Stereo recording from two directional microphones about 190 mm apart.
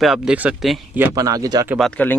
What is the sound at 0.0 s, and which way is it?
Speech, centre (ahead or behind).